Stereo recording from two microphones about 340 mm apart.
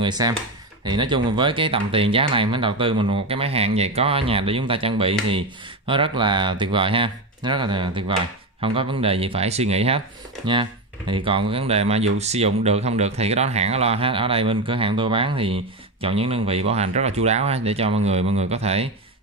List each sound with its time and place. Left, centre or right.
0.0 s speech: centre